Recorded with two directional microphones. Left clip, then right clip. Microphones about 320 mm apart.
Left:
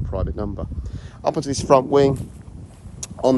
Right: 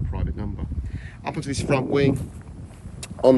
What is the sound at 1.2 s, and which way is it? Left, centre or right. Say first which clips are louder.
Speech: left 8 dB; centre.